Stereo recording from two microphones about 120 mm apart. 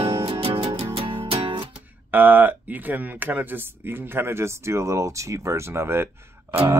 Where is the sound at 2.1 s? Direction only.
15° right (ahead or behind).